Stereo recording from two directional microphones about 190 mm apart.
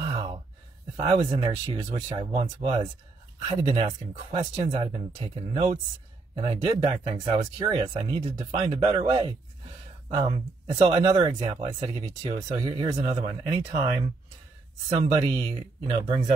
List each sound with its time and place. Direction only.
0.0 s a sound: 25° right (ahead or behind)
0.9 s speech: 25° right (ahead or behind)
13.5 s speech: 15° right (ahead or behind)
15.2 s speech: 25° right (ahead or behind)